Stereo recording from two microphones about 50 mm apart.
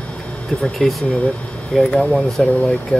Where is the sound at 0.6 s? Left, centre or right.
Centre.